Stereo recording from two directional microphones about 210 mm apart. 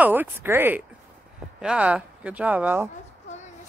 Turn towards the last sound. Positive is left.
turn(degrees=35)  # may be behind; listen again after turning